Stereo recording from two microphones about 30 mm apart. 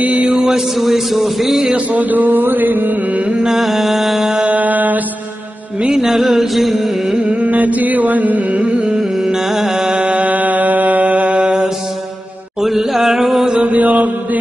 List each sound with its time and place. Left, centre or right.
0.0 s a sound: right
0.7 s a man's voice: centre
1.9 s mantra: right
3.4 s a man's voice: centre
4.5 s mantra: right
5.9 s music: centre
7.4 s chant: right
9.2 s music: centre
10.2 s mantra: right
11.3 s mantra: right
12.6 s chant: centre
13.6 s mantra: right